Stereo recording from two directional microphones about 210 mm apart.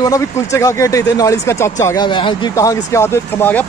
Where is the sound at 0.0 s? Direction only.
15° left (ahead or behind).